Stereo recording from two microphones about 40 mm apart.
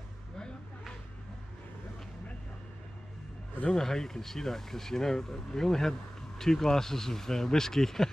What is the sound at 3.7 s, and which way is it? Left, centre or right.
Speech, centre.